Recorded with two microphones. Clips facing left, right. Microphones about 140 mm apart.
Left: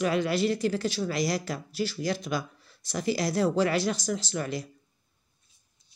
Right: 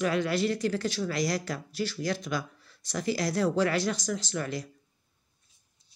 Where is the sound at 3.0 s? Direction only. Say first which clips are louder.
Left 1 dB; 10° left (ahead or behind).